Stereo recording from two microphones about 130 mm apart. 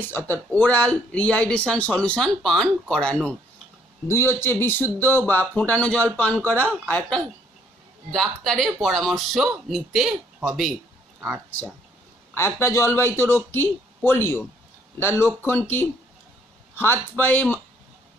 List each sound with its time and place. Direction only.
0.3 s speech: 10° left (ahead or behind)
4.1 s speech: 20° left (ahead or behind); by 10.8 s 5° right (ahead or behind)
12.4 s speech: 20° left (ahead or behind)